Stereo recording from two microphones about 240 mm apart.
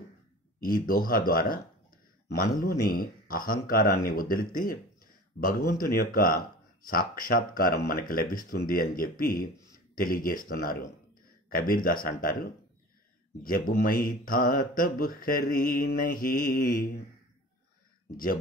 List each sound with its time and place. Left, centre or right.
0.7 s speech: left
18.1 s speech: left